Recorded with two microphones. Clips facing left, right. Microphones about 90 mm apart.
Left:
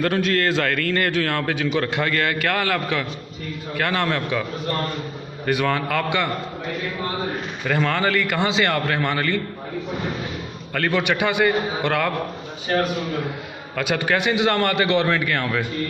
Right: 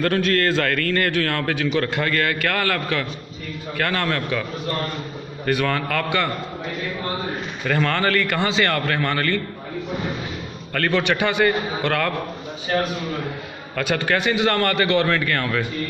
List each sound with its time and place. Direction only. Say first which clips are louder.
0.0 s a man's voice: right 1 dB; 15° left (ahead or behind)
7.6 s a man's voice: even; 15° left (ahead or behind)
10.7 s a man's voice: right 1 dB; 15° left (ahead or behind)
13.7 s a man's voice: even; 10° left (ahead or behind)